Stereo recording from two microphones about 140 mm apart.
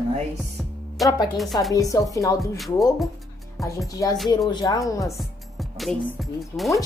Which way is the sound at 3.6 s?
25° left (ahead or behind).